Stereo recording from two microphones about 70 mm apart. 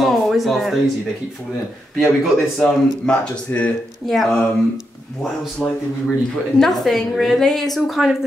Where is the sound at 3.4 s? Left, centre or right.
Left.